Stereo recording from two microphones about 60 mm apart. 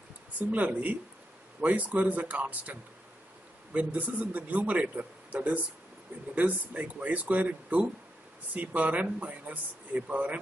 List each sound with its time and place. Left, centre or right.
0.4 s a man's voice: right